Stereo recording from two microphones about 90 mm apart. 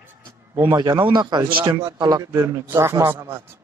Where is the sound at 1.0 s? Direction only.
55° right (ahead or behind).